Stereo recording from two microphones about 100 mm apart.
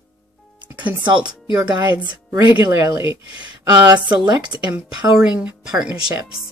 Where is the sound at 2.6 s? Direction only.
35° right (ahead or behind).